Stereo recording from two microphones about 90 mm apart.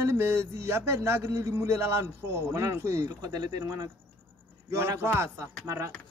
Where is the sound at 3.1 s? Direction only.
45° right (ahead or behind).